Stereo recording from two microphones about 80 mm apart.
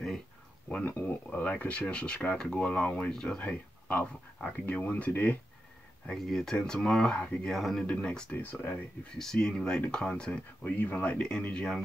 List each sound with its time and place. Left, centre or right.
0.7 s speech: centre
6.0 s speech: centre
7.8 s speech: centre
8.4 s speech: left
10.6 s speech: left